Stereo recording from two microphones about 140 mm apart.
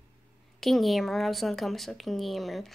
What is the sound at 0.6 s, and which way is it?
A woman's voice, centre (ahead or behind).